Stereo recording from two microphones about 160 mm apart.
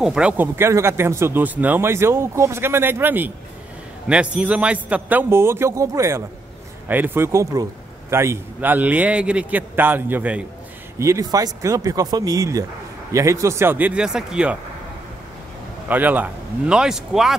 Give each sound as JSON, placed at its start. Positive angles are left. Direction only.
{"t": 0.0, "sound": "speech", "side_deg": -5}
{"t": 15.9, "sound": "a man's voice", "side_deg": -10}